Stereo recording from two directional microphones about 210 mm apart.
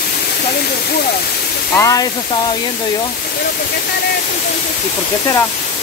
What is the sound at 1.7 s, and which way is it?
Speech, 15° left (ahead or behind).